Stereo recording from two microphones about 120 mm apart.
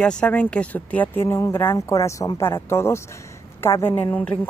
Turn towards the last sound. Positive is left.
turn(degrees=10)  # may be behind; listen again after turning